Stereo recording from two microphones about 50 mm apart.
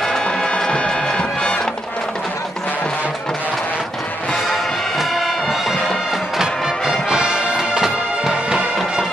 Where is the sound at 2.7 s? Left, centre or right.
Left.